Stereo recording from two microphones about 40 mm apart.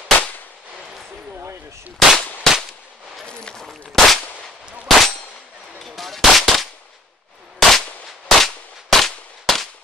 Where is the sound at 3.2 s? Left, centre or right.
Left.